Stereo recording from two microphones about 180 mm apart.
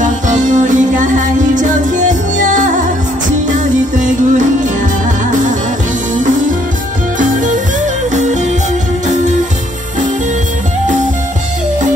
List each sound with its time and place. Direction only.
0.0 s music: 45° right (ahead or behind)